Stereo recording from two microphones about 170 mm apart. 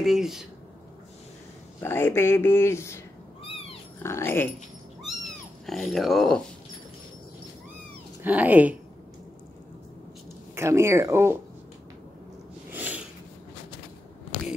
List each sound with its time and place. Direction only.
0.0 s speech: centre (ahead or behind)
1.8 s speech: 15° left (ahead or behind)
3.4 s cat: 35° left (ahead or behind)
4.0 s speech: 15° left (ahead or behind)
5.0 s cat: centre (ahead or behind)
8.2 s speech: 10° right (ahead or behind)
10.5 s speech: 15° right (ahead or behind)
12.7 s a sound: 10° right (ahead or behind)